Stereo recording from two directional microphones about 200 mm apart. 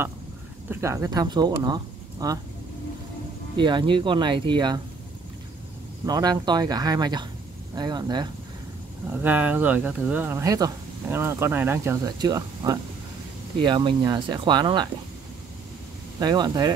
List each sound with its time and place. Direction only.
0.7 s speech: 15° right (ahead or behind)
3.5 s speech: 25° right (ahead or behind)
6.0 s speech: 20° right (ahead or behind)
9.2 s speech: 10° right (ahead or behind)
16.2 s speech: 20° right (ahead or behind)